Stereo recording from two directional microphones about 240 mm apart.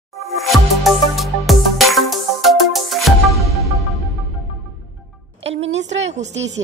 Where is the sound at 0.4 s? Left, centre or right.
Centre.